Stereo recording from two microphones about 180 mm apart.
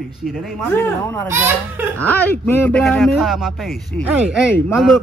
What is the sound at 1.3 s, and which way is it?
Speech, 15° right (ahead or behind).